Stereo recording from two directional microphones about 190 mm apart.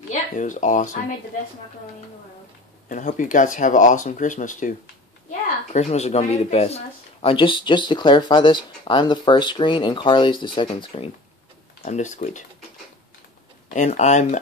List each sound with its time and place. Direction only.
0.1 s speech: 40° left (ahead or behind)
2.9 s speech: 45° left (ahead or behind)
11.8 s speech: 40° left (ahead or behind)
13.7 s speech: 40° left (ahead or behind)